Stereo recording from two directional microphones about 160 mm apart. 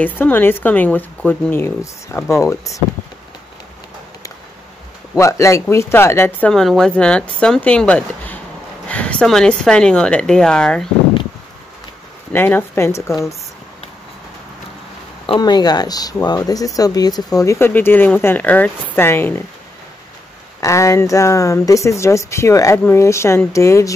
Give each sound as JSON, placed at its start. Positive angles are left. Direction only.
{"t": 0.0, "sound": "speech", "side_deg": 10}
{"t": 5.1, "sound": "speech", "side_deg": 20}
{"t": 6.5, "sound": "speech", "side_deg": 0}
{"t": 12.3, "sound": "speech", "side_deg": 10}
{"t": 15.2, "sound": "speech", "side_deg": 30}
{"t": 20.6, "sound": "speech", "side_deg": 20}